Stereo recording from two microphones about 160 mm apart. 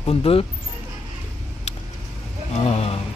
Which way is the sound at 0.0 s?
40° left (ahead or behind).